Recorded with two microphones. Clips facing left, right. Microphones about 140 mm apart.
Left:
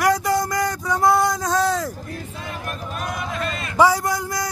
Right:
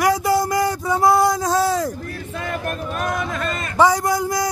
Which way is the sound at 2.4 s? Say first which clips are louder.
Right 8 dB; 50° right (ahead or behind).